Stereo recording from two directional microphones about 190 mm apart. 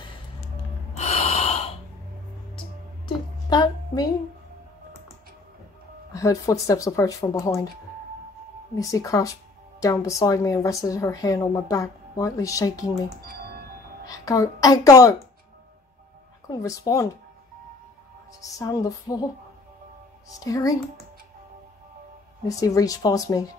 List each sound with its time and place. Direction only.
0.9 s gasp: 35° left (ahead or behind)
3.4 s music: 20° left (ahead or behind)
6.1 s speech: 15° left (ahead or behind)
8.7 s speech: 15° left (ahead or behind)
14.0 s speech: 20° left (ahead or behind)
16.4 s speech: 20° left (ahead or behind)
18.4 s speech: 15° left (ahead or behind)
20.3 s speech: 20° left (ahead or behind)
22.6 s speech: 20° left (ahead or behind)